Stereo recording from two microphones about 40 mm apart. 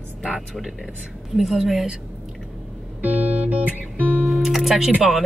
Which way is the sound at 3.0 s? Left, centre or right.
Right.